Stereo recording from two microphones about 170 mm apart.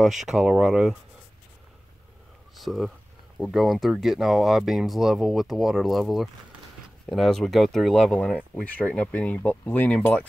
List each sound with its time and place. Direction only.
0.0 s speech: centre (ahead or behind)
2.5 s a sound: centre (ahead or behind)
3.3 s speech: centre (ahead or behind)